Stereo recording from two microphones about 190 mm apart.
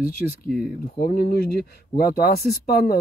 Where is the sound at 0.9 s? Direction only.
55° left (ahead or behind).